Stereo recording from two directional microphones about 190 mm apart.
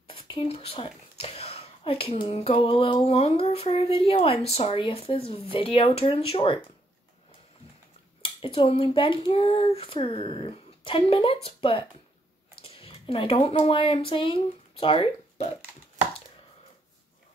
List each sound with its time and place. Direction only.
0.1 s a woman's voice: 30° left (ahead or behind)
8.2 s a woman's voice: 25° left (ahead or behind)